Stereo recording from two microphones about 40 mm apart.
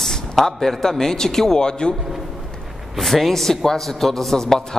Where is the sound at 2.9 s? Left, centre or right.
Centre.